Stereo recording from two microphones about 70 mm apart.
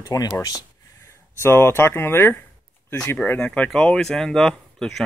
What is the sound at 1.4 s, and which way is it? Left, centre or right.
Speech, left.